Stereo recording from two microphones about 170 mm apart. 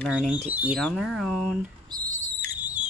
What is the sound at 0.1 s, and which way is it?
Speech, 10° right (ahead or behind).